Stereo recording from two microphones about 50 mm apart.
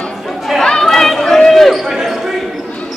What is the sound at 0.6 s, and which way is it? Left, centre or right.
Chatter, centre.